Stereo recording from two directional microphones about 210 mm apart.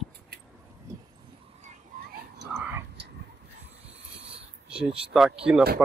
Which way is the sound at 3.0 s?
55° right (ahead or behind).